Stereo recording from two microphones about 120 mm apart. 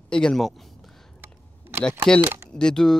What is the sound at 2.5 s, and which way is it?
Speech, 5° left (ahead or behind).